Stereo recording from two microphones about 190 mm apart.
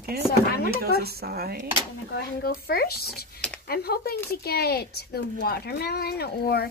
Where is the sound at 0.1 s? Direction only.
55° right (ahead or behind).